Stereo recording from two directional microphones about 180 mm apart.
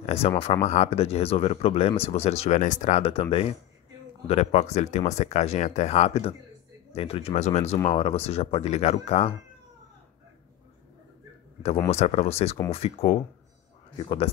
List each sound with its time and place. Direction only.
0.0 s a sound: 35° left (ahead or behind)
0.4 s speech: 35° left (ahead or behind)
11.9 s speech: 35° left (ahead or behind)